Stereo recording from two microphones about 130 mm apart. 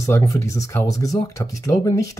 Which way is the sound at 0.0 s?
20° left (ahead or behind).